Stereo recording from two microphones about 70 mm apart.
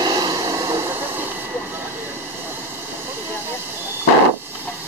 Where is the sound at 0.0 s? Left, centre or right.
Right.